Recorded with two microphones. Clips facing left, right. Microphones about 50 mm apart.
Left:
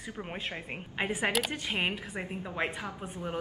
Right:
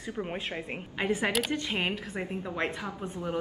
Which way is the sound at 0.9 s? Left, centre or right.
Centre.